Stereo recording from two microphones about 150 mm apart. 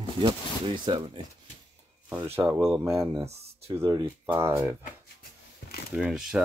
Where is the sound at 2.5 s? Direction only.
5° right (ahead or behind).